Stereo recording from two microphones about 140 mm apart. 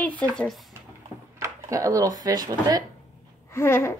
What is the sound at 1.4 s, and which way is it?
Speech, 20° right (ahead or behind).